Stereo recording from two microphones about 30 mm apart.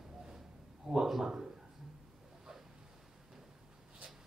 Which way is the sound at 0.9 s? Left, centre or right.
Centre.